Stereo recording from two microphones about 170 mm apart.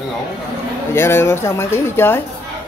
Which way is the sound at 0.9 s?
15° left (ahead or behind).